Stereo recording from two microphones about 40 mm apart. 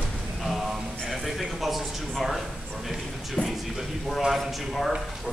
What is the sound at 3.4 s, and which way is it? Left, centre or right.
Speech, left.